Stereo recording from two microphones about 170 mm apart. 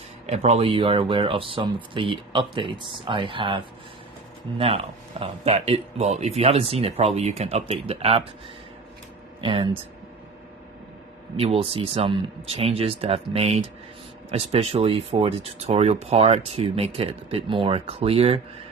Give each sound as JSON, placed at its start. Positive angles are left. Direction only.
{"t": 0.3, "sound": "speech", "side_deg": -40}
{"t": 9.4, "sound": "speech", "side_deg": -35}
{"t": 11.3, "sound": "speech", "side_deg": -35}